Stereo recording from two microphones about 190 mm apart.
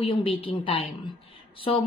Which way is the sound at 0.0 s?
30° left (ahead or behind).